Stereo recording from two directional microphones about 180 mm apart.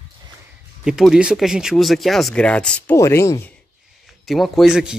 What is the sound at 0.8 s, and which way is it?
Speech, 5° right (ahead or behind).